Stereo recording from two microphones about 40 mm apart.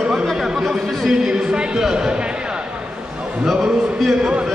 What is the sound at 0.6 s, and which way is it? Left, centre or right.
Speech, centre.